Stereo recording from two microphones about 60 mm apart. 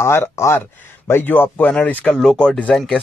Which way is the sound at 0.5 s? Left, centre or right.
Left.